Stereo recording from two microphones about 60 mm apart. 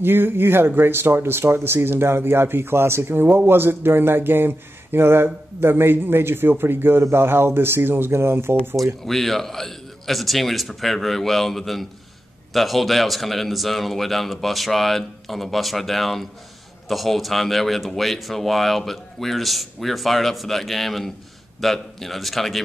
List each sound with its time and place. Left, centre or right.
0.0 s speech: right
9.0 s speech: centre